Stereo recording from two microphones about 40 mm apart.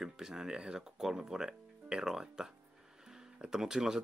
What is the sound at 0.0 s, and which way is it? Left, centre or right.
Speech, centre.